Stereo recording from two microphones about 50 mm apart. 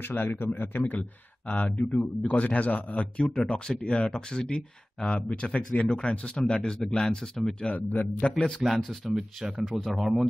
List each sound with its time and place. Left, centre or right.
0.0 s a man's voice: left; by 7.7 s centre
7.7 s a man's voice: left
8.4 s speech: centre
8.6 s speech: centre
9.8 s speech: centre